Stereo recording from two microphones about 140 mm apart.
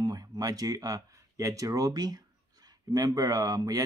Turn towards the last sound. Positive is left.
turn(degrees=-25)  # may be behind; listen again after turning